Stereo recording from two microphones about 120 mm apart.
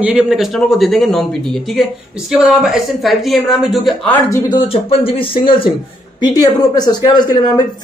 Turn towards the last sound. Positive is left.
turn(degrees=35)  # may be behind; listen again after turning